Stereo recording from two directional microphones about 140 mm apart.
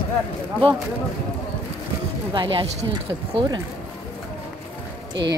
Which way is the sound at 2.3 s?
40° right (ahead or behind).